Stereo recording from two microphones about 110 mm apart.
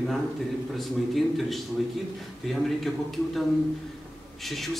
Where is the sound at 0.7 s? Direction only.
Centre (ahead or behind).